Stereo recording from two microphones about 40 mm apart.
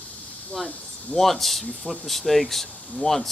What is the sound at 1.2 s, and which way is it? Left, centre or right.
Speech, centre.